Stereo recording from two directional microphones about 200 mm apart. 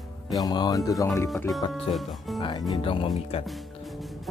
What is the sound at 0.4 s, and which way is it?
Speech, 20° left (ahead or behind).